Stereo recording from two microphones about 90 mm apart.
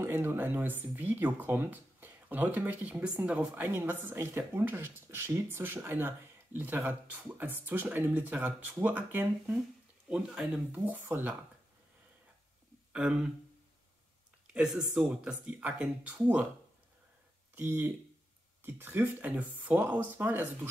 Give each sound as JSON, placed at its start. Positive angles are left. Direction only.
{"t": 0.0, "sound": "speech", "side_deg": -25}
{"t": 10.0, "sound": "speech", "side_deg": -10}
{"t": 11.0, "sound": "speech", "side_deg": -25}
{"t": 12.9, "sound": "speech", "side_deg": -10}
{"t": 14.5, "sound": "speech", "side_deg": -10}
{"t": 17.6, "sound": "speech", "side_deg": -25}